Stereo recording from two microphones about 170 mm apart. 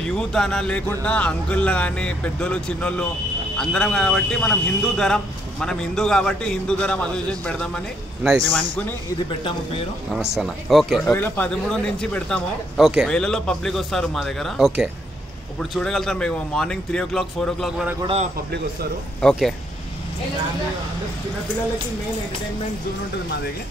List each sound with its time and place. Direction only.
0.0 s speech: 5° left (ahead or behind)
9.4 s speech: 30° left (ahead or behind)
10.3 s speech: centre (ahead or behind)
11.1 s speech: 10° left (ahead or behind)
18.0 s a man's voice: 40° right (ahead or behind)